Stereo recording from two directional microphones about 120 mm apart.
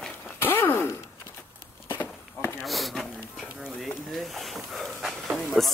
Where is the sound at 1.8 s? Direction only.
20° left (ahead or behind).